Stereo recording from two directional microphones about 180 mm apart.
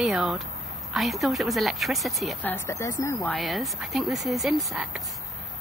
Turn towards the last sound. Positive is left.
turn(degrees=0)  # may be behind; listen again after turning